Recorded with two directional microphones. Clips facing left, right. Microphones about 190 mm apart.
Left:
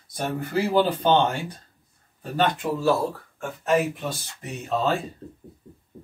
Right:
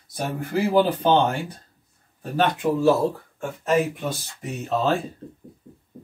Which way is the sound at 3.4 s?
Centre (ahead or behind).